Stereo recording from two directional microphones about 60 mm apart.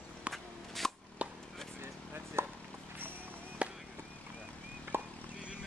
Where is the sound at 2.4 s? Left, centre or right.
Right.